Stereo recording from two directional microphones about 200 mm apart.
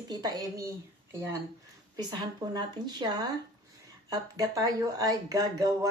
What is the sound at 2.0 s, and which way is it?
A woman's voice, 20° right (ahead or behind).